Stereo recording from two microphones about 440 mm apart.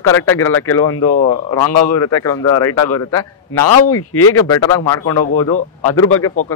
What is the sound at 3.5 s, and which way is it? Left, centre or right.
Speech, left.